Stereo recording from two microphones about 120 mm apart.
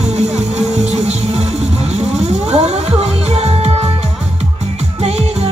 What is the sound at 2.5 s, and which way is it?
Music, 60° right (ahead or behind).